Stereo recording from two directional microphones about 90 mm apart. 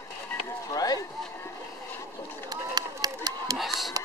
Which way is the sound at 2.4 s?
45° right (ahead or behind).